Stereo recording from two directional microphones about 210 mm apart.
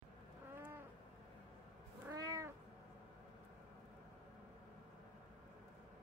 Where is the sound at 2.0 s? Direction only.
15° right (ahead or behind).